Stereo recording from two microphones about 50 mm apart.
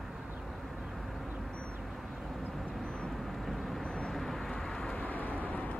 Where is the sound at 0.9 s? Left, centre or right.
Centre.